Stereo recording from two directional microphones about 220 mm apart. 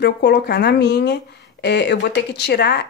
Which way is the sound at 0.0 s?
50° left (ahead or behind).